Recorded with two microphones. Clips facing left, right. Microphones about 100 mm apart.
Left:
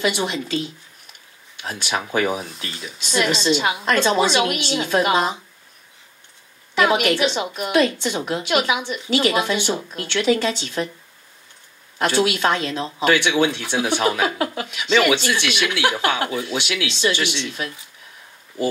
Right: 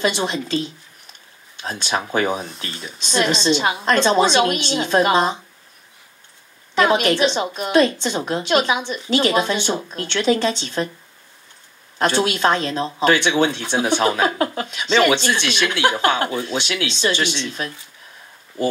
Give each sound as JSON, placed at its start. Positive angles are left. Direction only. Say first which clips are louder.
{"t": 0.0, "sound": "a woman's voice", "louder": "right 1 dB", "side_deg": -30}
{"t": 6.7, "sound": "a woman's voice", "louder": "right 1 dB", "side_deg": -30}
{"t": 12.0, "sound": "a woman's voice", "louder": "right 1 dB", "side_deg": -30}